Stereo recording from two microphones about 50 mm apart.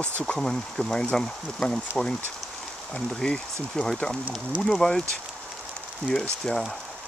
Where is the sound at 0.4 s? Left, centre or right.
Centre.